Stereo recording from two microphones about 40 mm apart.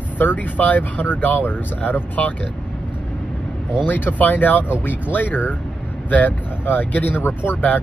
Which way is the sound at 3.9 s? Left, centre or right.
Left.